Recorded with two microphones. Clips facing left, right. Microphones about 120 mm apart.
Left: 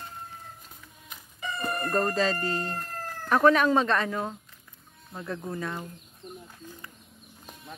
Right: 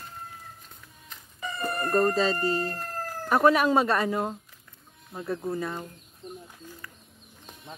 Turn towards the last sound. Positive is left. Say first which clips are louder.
# left 1 dB
turn(degrees=0)  # may be behind; listen again after turning